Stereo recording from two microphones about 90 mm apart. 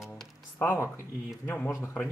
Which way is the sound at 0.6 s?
30° left (ahead or behind).